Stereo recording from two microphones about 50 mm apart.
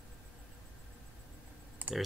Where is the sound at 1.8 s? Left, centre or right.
Right.